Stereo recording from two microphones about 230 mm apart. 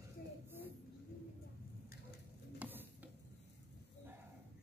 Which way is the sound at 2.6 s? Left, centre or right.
Centre.